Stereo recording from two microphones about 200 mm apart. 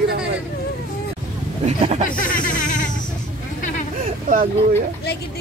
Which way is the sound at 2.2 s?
40° left (ahead or behind).